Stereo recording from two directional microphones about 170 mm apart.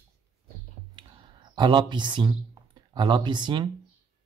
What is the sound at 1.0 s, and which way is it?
Speech, 25° right (ahead or behind).